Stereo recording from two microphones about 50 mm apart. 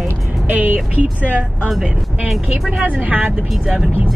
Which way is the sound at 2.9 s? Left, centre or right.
Right.